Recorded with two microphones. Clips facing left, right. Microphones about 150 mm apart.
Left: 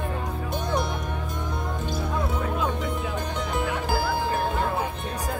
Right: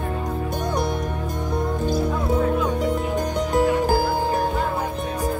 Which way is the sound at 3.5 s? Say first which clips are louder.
Right 10 dB; 40° right (ahead or behind).